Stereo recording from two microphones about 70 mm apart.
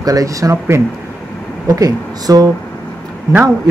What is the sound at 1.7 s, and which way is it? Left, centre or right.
Speech, right.